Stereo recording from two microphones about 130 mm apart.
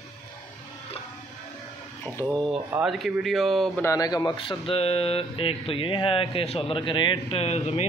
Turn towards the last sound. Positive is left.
turn(degrees=55)  # may be behind; listen again after turning